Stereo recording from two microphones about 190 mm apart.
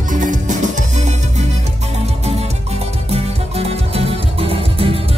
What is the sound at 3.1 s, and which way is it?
Music, 30° right (ahead or behind).